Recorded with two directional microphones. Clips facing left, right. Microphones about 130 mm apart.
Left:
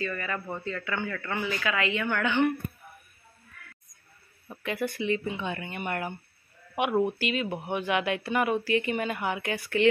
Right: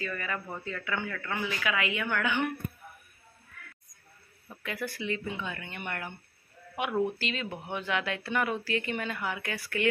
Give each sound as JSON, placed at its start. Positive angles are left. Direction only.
{"t": 0.0, "sound": "a woman's voice", "side_deg": -5}
{"t": 1.2, "sound": "speech", "side_deg": 5}
{"t": 1.6, "sound": "a woman's voice", "side_deg": -10}
{"t": 4.5, "sound": "speech", "side_deg": 20}